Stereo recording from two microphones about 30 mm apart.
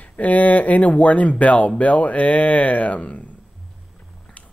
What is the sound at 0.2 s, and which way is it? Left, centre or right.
Speech, left.